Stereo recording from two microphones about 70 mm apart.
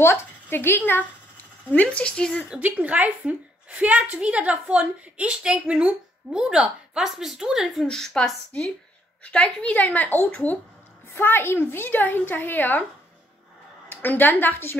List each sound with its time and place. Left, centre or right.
0.0 s a woman's voice: left
1.7 s a woman's voice: left
2.6 s a woman's voice: right
7.8 s a woman's voice: centre; by 12.8 s left
13.8 s a woman's voice: left